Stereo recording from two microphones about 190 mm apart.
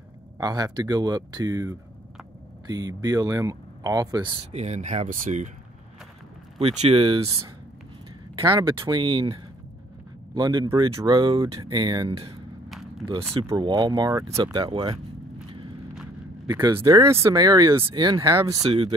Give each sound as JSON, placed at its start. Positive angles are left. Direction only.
{"t": 0.4, "sound": "speech", "side_deg": -20}
{"t": 6.6, "sound": "speech", "side_deg": -35}
{"t": 12.6, "sound": "a sound", "side_deg": 0}
{"t": 13.3, "sound": "speech", "side_deg": -25}
{"t": 15.9, "sound": "a sound", "side_deg": -5}
{"t": 16.6, "sound": "speech", "side_deg": -20}
{"t": 18.6, "sound": "speech", "side_deg": -30}